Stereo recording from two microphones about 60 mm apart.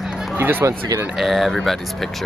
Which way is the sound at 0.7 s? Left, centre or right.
Right.